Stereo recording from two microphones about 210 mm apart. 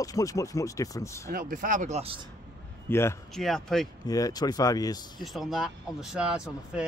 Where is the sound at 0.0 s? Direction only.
15° left (ahead or behind).